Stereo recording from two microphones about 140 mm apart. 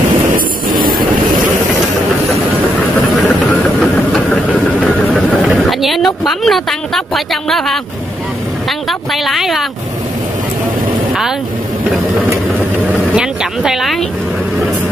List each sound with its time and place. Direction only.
0.7 s vehicle: 80° right
3.8 s engine: 5° left (ahead or behind)
5.5 s speech: centre (ahead or behind)
8.6 s a sound: centre (ahead or behind)
13.1 s speech: 5° right (ahead or behind)